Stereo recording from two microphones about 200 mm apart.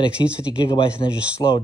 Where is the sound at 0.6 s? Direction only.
25° left (ahead or behind).